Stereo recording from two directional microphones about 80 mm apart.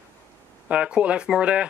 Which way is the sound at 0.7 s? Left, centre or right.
Centre.